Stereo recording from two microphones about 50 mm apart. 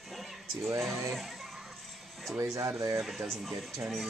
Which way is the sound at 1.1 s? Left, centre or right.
Centre.